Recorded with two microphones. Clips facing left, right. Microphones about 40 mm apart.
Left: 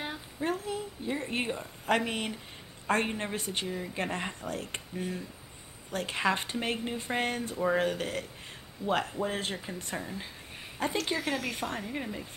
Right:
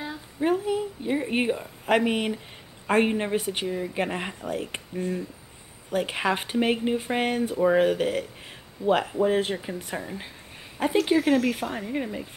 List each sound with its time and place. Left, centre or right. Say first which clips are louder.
0.4 s a woman's voice: right 9 dB; centre
6.0 s speech: right 3 dB; centre